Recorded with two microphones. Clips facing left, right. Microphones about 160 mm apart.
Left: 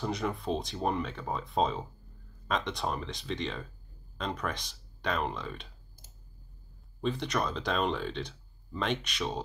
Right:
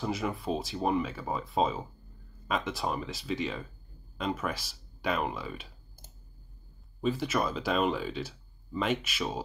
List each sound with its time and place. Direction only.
0.0 s speech: 5° right (ahead or behind)
7.0 s speech: 5° right (ahead or behind)